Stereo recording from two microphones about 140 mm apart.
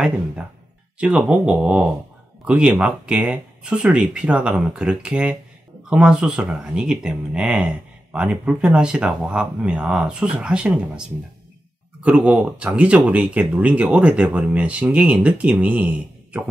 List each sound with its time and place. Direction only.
0.9 s speech: 5° right (ahead or behind)